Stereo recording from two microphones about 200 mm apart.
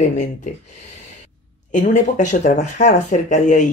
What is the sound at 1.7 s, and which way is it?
Speech, 40° left (ahead or behind).